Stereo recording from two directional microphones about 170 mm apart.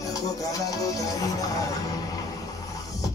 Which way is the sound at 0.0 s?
20° left (ahead or behind).